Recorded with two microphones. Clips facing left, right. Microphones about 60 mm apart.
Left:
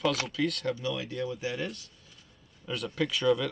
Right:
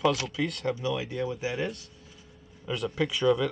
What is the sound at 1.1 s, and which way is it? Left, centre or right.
Speech, centre.